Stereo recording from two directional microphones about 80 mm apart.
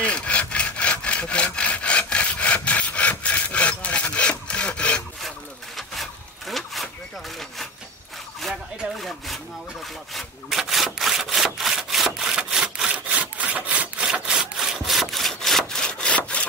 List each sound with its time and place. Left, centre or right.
0.0 s wood: centre
5.8 s wood: centre
8.4 s a sound: centre
10.1 s sawing: centre